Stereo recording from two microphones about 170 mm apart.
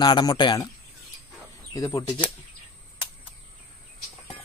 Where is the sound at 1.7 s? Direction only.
20° left (ahead or behind).